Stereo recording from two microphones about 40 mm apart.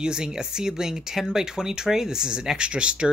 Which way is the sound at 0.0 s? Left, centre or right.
Centre.